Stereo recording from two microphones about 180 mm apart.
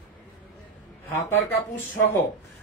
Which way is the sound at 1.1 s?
10° left (ahead or behind).